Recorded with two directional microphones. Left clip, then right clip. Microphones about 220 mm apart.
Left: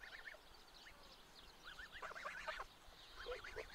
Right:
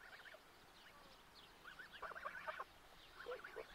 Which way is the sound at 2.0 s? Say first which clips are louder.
Even; 15° left (ahead or behind).